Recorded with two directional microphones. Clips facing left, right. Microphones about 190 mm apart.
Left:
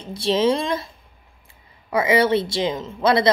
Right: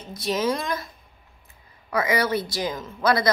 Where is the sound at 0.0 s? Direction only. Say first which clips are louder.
Left 6 dB; 30° left (ahead or behind).